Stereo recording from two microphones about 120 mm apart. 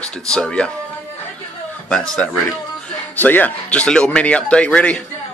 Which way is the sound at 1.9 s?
5° left (ahead or behind).